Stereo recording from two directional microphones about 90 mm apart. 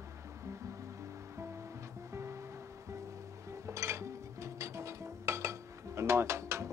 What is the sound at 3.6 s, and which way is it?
Music, 30° right (ahead or behind).